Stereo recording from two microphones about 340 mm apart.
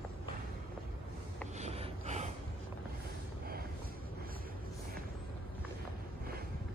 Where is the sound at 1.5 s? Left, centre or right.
Centre.